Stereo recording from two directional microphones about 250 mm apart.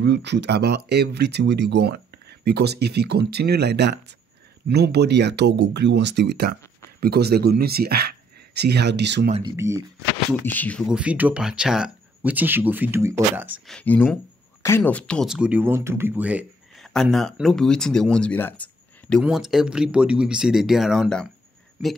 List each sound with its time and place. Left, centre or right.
0.0 s speech: right
9.3 s speech: centre
10.4 s speech: centre
13.7 s speech: centre